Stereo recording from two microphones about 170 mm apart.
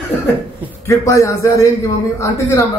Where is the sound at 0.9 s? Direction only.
20° left (ahead or behind).